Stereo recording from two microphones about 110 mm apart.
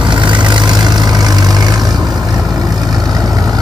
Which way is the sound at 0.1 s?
45° right (ahead or behind).